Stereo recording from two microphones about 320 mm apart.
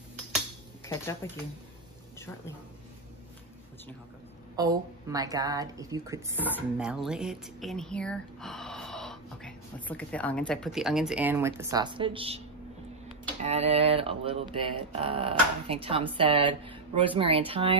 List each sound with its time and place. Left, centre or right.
0.8 s speech: centre
4.6 s speech: centre
6.3 s speech: centre
13.4 s speech: centre